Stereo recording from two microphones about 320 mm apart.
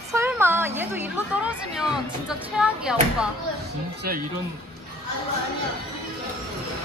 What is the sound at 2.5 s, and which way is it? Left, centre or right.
Speech, centre.